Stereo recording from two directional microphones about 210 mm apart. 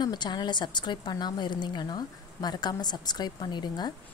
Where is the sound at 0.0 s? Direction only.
20° left (ahead or behind).